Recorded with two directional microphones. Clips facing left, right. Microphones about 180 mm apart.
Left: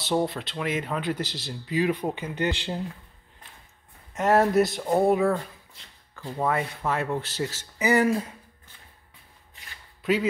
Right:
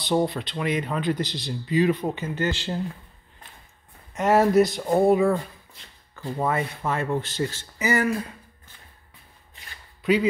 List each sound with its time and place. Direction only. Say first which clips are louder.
0.0 s speech: right 2 dB; 5° left (ahead or behind)
4.1 s speech: right 2 dB; centre (ahead or behind)
7.9 s speech: left 2 dB; 20° left (ahead or behind)
10.0 s a man's voice: right 3 dB; centre (ahead or behind)